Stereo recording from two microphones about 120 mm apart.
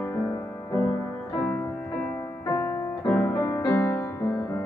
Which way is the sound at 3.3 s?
30° left (ahead or behind).